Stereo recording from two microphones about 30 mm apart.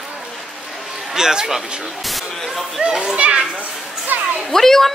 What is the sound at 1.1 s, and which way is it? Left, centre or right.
Speech, right.